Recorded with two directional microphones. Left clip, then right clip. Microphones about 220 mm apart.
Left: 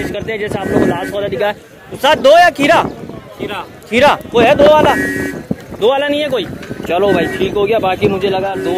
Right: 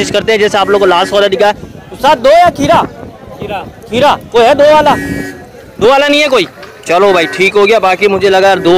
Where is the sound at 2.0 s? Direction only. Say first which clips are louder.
Right 2 dB; centre (ahead or behind).